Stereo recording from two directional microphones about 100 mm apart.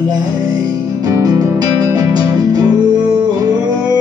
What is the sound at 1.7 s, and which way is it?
Music, 35° right (ahead or behind).